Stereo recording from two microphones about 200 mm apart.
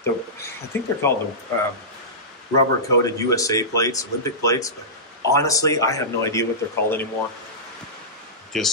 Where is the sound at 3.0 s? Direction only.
15° left (ahead or behind).